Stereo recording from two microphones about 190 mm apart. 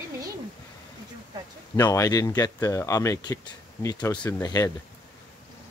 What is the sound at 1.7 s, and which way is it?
Speech, 15° left (ahead or behind).